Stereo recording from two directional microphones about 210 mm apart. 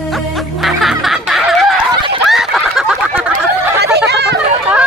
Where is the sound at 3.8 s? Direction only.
50° right (ahead or behind).